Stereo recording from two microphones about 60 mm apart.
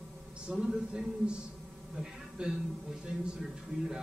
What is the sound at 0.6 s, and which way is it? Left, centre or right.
A man's voice, centre.